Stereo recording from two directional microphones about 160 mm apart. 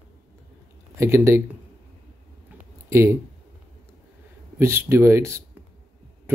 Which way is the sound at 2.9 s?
15° right (ahead or behind).